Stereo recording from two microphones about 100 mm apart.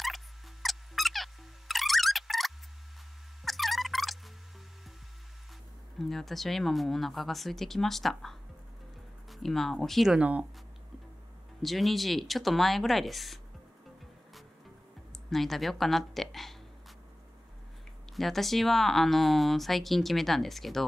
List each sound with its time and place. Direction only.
0.0 s a sound: centre (ahead or behind)
5.9 s speech: centre (ahead or behind)
10.1 s speech: 15° right (ahead or behind)
11.6 s speech: centre (ahead or behind)
15.2 s a woman's voice: centre (ahead or behind)
18.1 s speech: centre (ahead or behind)